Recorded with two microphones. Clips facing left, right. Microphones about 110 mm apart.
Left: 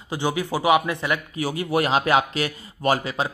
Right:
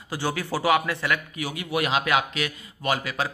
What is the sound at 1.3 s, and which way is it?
Speech, 35° left (ahead or behind).